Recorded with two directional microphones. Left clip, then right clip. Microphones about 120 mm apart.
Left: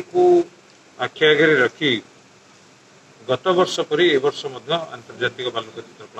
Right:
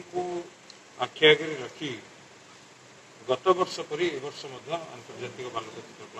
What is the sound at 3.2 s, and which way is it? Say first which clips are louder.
A man's voice: left 6 dB; 20° left (ahead or behind).